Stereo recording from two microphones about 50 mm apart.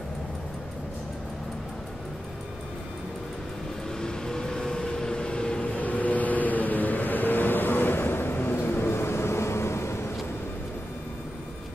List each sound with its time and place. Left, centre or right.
4.0 s vehicle: centre
5.8 s vehicle: left